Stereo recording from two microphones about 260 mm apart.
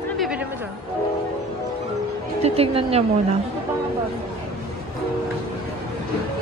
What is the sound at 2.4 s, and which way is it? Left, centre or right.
Speech, right.